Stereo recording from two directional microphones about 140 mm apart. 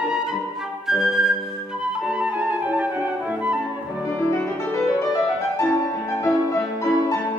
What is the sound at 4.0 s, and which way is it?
Music, 20° left (ahead or behind).